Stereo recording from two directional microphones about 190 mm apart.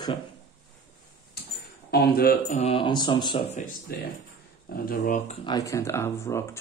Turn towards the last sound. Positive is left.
turn(degrees=15)  # may be behind; listen again after turning